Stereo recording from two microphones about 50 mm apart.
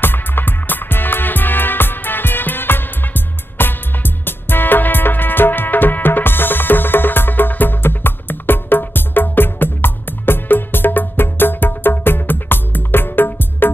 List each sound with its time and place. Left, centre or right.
0.0 s music: left